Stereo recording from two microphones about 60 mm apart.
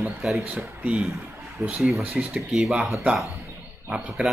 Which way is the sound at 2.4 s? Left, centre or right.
Centre.